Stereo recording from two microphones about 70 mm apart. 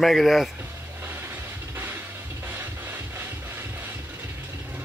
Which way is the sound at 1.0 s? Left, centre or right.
Right.